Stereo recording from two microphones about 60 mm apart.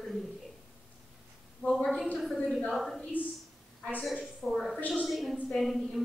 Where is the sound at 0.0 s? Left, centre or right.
Centre.